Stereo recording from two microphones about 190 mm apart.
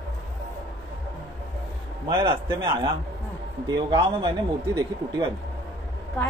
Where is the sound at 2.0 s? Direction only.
25° right (ahead or behind).